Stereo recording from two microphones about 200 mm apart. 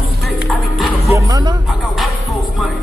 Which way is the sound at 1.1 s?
20° right (ahead or behind).